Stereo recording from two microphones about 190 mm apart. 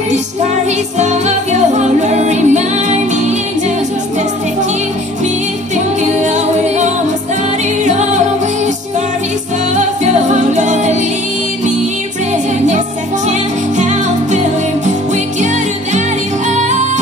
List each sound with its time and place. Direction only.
0.7 s music: 35° right (ahead or behind)
6.0 s a capella: 40° right (ahead or behind)
7.8 s music: 40° right (ahead or behind)
9.8 s music: 40° right (ahead or behind)
13.3 s music: 40° right (ahead or behind)
16.4 s music: 40° right (ahead or behind)